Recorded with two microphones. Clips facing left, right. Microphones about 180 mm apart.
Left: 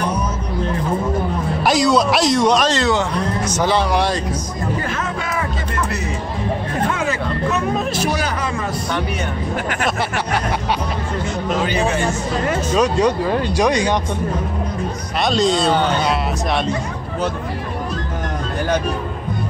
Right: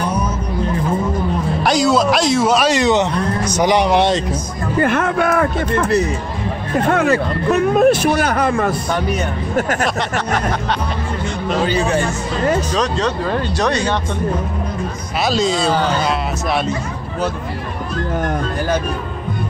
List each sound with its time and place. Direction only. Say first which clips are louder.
1.6 s speech: even; centre (ahead or behind); by 4.2 s 20° right (ahead or behind)
4.7 s speech: right 8 dB; 60° right (ahead or behind)
6.9 s speech: right 6 dB; 60° right (ahead or behind)
9.6 s speech: right 8 dB; 45° right (ahead or behind)
9.8 s speech: right 1 dB; 10° left (ahead or behind)
12.7 s speech: left 3 dB; 10° left (ahead or behind)
15.2 s speech: even; centre (ahead or behind)